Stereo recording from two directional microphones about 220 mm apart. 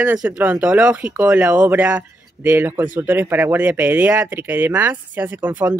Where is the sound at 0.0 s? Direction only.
5° right (ahead or behind).